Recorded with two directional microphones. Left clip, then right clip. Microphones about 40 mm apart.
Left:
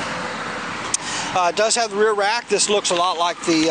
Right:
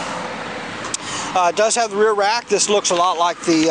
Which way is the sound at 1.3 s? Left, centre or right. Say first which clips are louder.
Right 2 dB; right.